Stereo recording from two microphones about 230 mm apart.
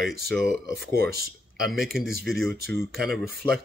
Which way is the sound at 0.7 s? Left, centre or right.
Right.